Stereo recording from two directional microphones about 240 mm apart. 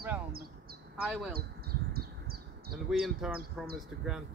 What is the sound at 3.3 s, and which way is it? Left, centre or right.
Speech, right.